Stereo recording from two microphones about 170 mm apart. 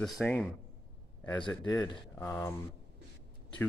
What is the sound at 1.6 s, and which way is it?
Speech, 20° left (ahead or behind).